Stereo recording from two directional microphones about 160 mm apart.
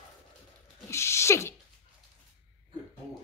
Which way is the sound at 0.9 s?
15° left (ahead or behind).